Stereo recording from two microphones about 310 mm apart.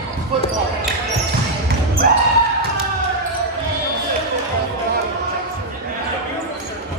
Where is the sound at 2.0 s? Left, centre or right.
Right.